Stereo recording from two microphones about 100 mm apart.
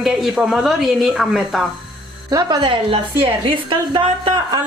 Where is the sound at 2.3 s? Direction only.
45° right (ahead or behind).